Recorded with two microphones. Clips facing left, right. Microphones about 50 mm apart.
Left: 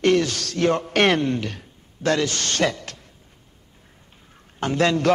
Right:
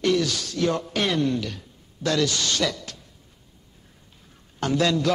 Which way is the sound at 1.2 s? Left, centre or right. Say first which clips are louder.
Left 1 dB; left.